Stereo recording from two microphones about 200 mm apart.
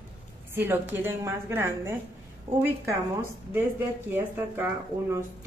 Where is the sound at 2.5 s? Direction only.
30° right (ahead or behind).